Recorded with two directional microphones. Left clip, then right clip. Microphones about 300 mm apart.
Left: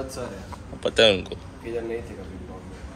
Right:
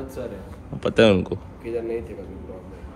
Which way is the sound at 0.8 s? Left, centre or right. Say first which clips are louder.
Right 1 dB; right.